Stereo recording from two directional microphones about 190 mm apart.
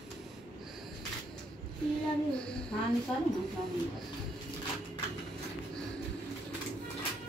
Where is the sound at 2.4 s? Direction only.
5° left (ahead or behind).